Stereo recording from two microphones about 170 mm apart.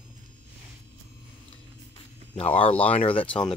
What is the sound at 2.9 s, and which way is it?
Speech, 35° left (ahead or behind).